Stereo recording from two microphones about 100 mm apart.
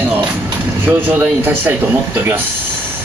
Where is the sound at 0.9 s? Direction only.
15° right (ahead or behind).